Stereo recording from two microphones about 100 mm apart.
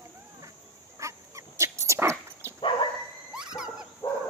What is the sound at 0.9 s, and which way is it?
Dog, 30° right (ahead or behind).